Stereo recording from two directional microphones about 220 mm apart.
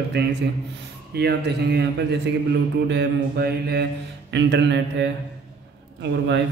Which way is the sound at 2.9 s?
50° right (ahead or behind).